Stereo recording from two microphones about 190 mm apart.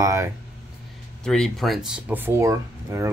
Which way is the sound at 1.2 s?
5° left (ahead or behind).